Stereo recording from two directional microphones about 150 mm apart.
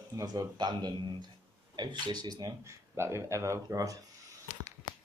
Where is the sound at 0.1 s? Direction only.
25° right (ahead or behind).